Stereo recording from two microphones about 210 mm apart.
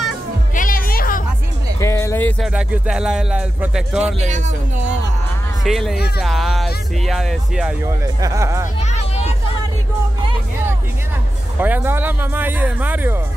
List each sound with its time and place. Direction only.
0.6 s music: 40° left (ahead or behind)
1.8 s music: 15° left (ahead or behind)
2.4 s speech: 5° right (ahead or behind)
4.0 s a man's voice: 35° right (ahead or behind)
5.6 s speech: centre (ahead or behind)
7.8 s speech: 15° right (ahead or behind)
8.9 s a sound: 30° left (ahead or behind)
11.6 s speech: 10° right (ahead or behind)